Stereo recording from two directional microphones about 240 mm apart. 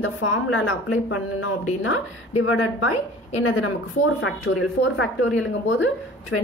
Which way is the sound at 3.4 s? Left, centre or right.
Left.